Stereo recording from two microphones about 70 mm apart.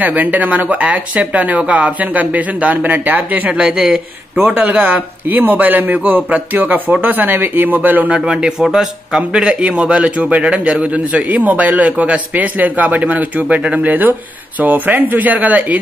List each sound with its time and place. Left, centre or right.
0.0 s speech: right
3.5 s speech: centre
8.3 s a man's voice: centre